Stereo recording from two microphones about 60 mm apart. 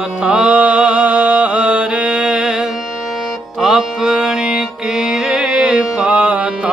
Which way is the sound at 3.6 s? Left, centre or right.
Centre.